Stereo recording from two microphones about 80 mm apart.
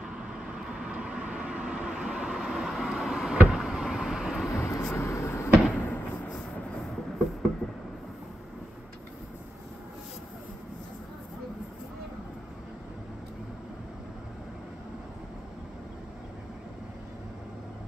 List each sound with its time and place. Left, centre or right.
0.7 s vehicle: centre
4.5 s vehicle: left
4.9 s a sound: left